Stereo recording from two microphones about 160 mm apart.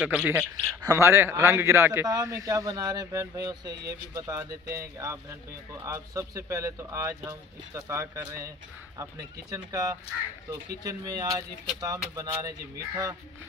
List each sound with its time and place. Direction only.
0.0 s a man's voice: 10° right (ahead or behind)